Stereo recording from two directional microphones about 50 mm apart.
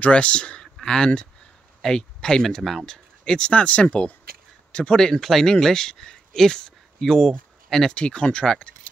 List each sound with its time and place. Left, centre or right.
0.0 s speech: left
2.4 s speech: centre
7.9 s speech: left